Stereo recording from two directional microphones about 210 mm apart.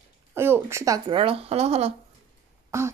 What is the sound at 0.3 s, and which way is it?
Speech, 10° right (ahead or behind).